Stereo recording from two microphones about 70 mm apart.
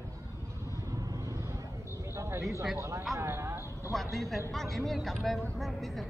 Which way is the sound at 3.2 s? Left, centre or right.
Right.